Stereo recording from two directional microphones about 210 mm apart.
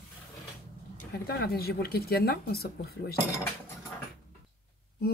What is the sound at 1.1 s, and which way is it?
Speech, 50° left (ahead or behind).